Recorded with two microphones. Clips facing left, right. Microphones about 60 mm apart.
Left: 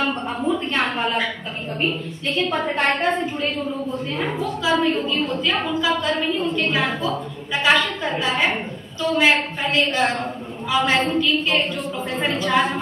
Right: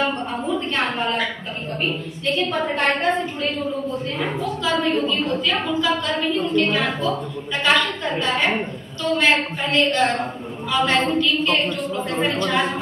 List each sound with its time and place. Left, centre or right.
0.1 s a sound: centre
2.3 s a woman's voice: centre
4.2 s a woman's voice: centre